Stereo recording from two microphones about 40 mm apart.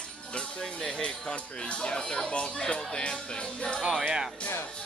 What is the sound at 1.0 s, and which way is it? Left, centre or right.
Speech, left.